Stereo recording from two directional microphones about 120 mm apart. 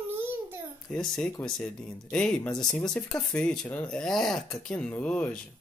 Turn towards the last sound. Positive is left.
turn(degrees=10)  # may be behind; listen again after turning